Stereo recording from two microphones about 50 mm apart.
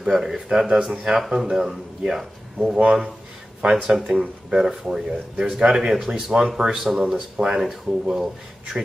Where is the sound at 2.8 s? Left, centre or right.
Centre.